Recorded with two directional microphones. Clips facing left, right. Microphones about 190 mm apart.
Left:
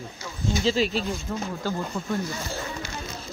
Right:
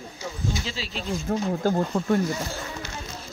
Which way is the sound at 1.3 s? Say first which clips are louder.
Right 10 dB; 50° right (ahead or behind).